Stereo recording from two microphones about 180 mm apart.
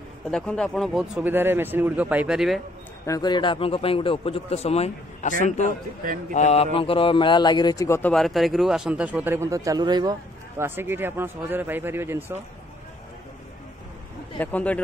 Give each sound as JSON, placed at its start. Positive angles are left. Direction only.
{"t": 0.3, "sound": "speech", "side_deg": 5}
{"t": 3.1, "sound": "a man's voice", "side_deg": 25}
{"t": 6.3, "sound": "a man's voice", "side_deg": 40}
{"t": 8.1, "sound": "a man's voice", "side_deg": 0}
{"t": 10.6, "sound": "a man's voice", "side_deg": -10}
{"t": 14.4, "sound": "speech", "side_deg": 10}